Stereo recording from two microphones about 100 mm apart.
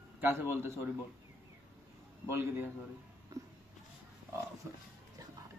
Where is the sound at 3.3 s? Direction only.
30° right (ahead or behind).